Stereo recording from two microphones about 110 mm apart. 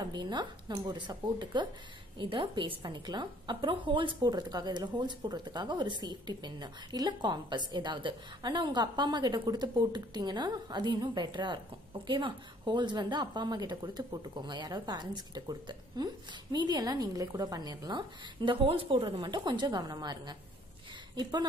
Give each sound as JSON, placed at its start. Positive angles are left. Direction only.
{"t": 0.0, "sound": "a woman's voice", "side_deg": -40}